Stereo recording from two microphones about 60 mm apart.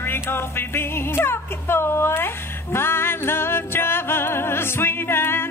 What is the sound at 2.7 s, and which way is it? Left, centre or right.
Music, left.